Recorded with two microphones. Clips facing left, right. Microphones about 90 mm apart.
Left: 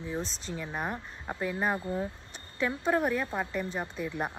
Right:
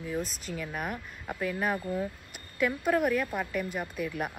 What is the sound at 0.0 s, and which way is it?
Speech, 25° left (ahead or behind).